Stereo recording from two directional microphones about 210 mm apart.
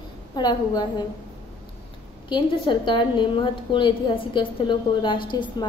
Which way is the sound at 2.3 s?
25° left (ahead or behind).